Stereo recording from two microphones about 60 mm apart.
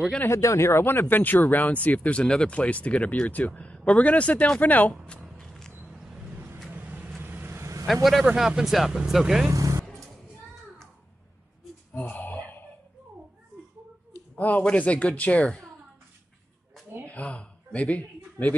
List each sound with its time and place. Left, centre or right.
0.3 s speech: left
5.4 s vehicle: centre
6.7 s vehicle: right
7.8 s a man's voice: centre
9.5 s vehicle: right
12.0 s a sound: left
14.3 s a sound: left
14.6 s speech: centre
17.1 s a sound: left